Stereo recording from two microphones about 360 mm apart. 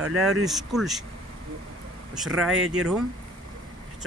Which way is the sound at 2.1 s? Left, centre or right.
Centre.